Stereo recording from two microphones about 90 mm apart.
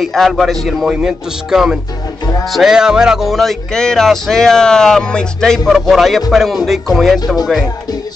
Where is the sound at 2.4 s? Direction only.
Centre (ahead or behind).